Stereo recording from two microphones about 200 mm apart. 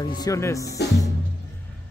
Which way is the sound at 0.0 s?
15° left (ahead or behind).